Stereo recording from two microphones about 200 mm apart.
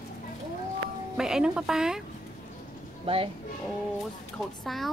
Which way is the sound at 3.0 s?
25° right (ahead or behind).